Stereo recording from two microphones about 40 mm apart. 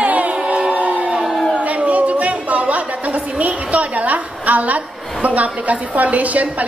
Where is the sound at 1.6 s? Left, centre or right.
Right.